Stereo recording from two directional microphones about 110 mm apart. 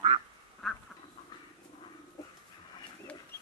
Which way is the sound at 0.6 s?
Centre (ahead or behind).